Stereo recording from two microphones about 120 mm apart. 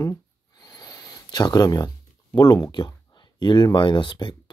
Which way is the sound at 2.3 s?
35° left (ahead or behind).